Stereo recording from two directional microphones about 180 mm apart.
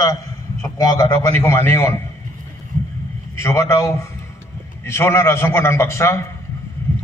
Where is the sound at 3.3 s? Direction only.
15° left (ahead or behind).